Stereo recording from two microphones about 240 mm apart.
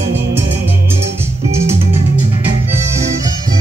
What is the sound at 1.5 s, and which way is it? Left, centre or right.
Music, centre.